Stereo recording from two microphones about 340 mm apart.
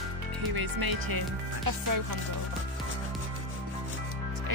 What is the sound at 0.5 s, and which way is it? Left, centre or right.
Speech, right.